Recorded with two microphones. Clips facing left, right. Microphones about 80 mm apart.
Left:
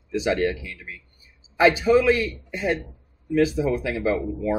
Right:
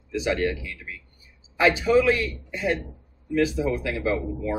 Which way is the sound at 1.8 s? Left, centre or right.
Centre.